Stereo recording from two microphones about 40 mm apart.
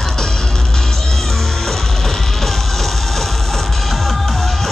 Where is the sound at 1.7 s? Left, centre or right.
Centre.